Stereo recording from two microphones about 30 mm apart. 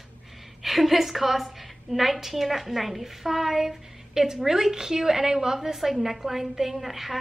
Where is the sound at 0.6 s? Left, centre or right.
Centre.